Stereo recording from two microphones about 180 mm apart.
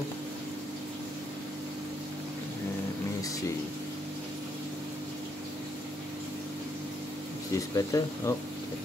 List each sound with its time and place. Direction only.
7.5 s speech: 20° left (ahead or behind)